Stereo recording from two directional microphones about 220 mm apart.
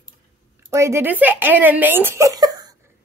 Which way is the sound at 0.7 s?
10° right (ahead or behind).